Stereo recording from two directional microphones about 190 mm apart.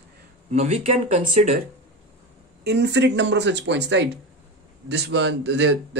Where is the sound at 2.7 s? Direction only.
60° right (ahead or behind).